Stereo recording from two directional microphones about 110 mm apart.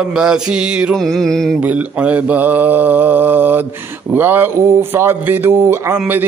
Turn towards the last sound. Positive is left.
turn(degrees=-20)  # may be behind; listen again after turning